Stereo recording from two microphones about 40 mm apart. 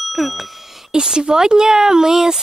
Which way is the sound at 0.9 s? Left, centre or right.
Centre.